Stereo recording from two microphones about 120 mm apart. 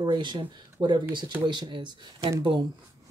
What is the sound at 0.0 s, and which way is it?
A woman's voice, 40° right (ahead or behind).